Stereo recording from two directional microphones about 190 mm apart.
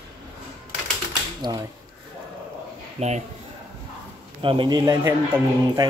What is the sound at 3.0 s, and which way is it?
Speech, 35° right (ahead or behind).